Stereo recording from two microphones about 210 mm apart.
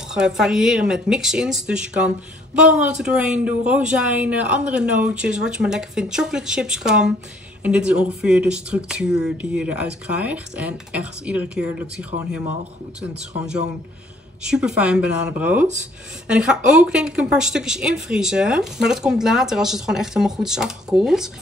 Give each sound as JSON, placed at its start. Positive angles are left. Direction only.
{"t": 0.1, "sound": "speech", "side_deg": 0}
{"t": 14.4, "sound": "speech", "side_deg": -5}